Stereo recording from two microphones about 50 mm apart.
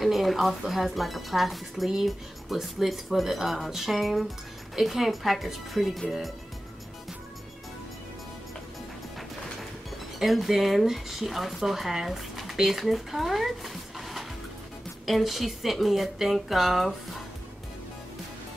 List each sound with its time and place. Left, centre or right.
0.0 s speech: centre
10.1 s speech: centre